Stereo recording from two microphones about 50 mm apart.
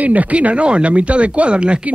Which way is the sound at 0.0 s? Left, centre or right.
Right.